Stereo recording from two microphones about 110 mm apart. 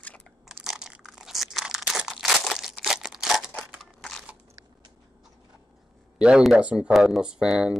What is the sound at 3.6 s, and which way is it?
Scissors, centre (ahead or behind).